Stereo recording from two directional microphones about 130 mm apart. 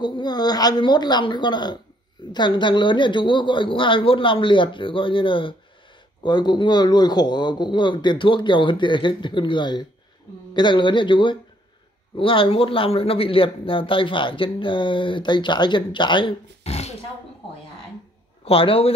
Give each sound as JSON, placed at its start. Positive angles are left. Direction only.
{"t": 0.0, "sound": "speech", "side_deg": 35}
{"t": 16.6, "sound": "roar", "side_deg": 55}
{"t": 18.4, "sound": "speech", "side_deg": 45}